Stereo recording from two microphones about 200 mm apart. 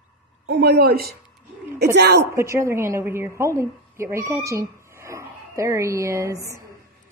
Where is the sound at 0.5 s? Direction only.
50° right (ahead or behind).